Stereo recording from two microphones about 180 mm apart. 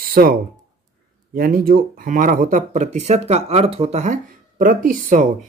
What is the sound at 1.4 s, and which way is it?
Speech, 50° right (ahead or behind).